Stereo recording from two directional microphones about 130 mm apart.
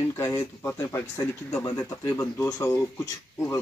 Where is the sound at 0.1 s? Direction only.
25° left (ahead or behind).